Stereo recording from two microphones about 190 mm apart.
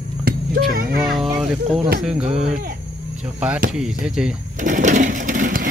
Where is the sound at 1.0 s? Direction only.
Centre (ahead or behind).